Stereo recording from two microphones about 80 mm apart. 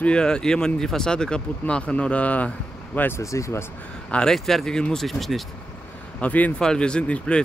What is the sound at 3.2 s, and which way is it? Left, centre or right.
Speech, left.